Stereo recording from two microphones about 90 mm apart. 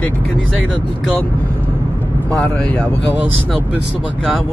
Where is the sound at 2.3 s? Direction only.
15° left (ahead or behind).